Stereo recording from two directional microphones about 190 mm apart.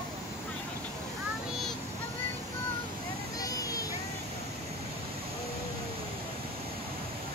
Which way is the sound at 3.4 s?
20° left (ahead or behind).